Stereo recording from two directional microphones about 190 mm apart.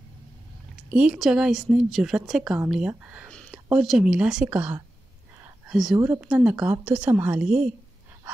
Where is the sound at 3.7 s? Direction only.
5° right (ahead or behind).